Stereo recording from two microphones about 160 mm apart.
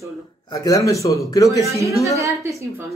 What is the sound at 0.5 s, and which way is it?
Speech, 20° left (ahead or behind).